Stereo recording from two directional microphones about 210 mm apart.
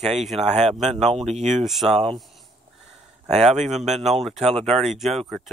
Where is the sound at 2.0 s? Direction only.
Centre (ahead or behind).